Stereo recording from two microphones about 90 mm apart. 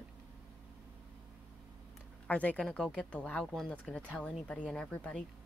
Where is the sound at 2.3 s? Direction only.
15° left (ahead or behind).